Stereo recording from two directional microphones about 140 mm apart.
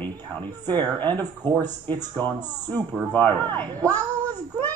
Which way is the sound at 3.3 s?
35° right (ahead or behind).